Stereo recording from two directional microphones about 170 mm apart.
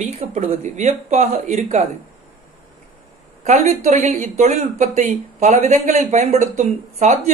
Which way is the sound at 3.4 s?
45° right (ahead or behind).